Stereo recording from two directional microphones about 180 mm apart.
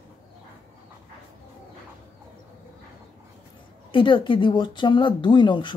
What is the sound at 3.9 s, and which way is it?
Speech, 25° left (ahead or behind).